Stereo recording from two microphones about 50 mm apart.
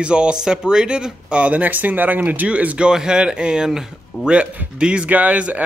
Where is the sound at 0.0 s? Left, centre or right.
Centre; by 2.4 s right.